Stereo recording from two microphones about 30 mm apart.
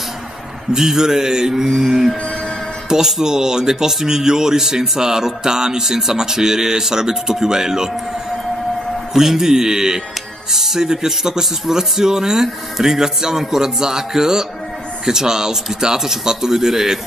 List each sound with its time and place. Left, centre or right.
0.7 s speech: centre
3.1 s speech: centre
9.1 s speech: centre